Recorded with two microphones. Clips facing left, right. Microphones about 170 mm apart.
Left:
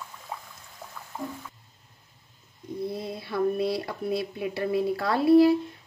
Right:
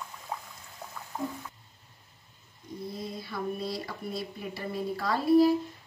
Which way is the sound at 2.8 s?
60° left (ahead or behind).